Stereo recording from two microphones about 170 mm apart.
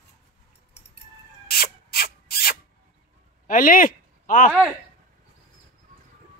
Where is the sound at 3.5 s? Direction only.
55° left (ahead or behind).